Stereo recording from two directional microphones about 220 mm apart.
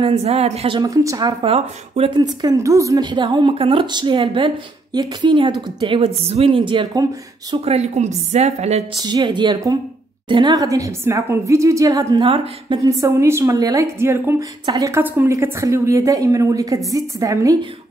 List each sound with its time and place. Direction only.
0.0 s a woman's voice: 25° right (ahead or behind)
8.9 s a woman's voice: 20° right (ahead or behind)